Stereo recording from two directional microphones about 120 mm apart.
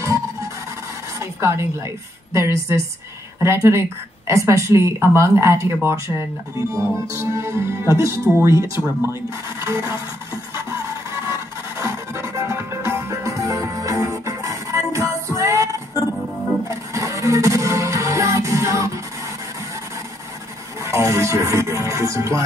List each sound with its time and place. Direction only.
1.2 s a woman's voice: 20° right (ahead or behind)
11.2 s music: 25° right (ahead or behind)
20.8 s speech: 25° right (ahead or behind)